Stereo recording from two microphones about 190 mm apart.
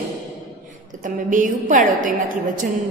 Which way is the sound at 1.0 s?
45° right (ahead or behind).